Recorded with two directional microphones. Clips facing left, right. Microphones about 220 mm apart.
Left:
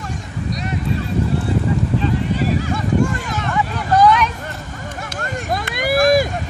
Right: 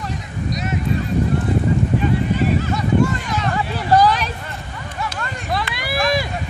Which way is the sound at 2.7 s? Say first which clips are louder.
Right 1 dB; 50° left (ahead or behind).